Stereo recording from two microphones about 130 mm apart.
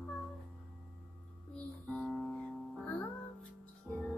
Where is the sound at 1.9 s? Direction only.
Centre (ahead or behind).